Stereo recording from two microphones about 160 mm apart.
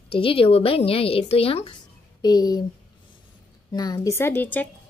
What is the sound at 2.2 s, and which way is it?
Speech, 25° left (ahead or behind).